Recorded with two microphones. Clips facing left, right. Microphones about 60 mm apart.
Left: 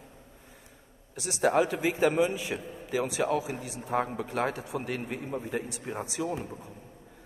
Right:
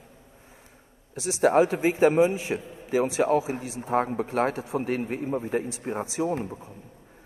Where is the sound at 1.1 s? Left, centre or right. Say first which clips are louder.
Right 4 dB; right.